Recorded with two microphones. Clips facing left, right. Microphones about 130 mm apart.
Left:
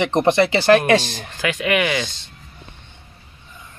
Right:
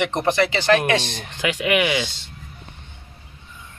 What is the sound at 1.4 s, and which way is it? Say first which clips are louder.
Speech: even; 10° right (ahead or behind).